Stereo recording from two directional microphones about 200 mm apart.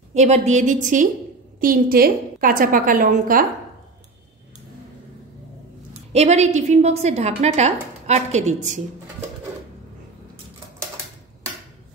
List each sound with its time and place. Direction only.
0.1 s a woman's voice: 35° right (ahead or behind)
6.1 s a woman's voice: 35° right (ahead or behind)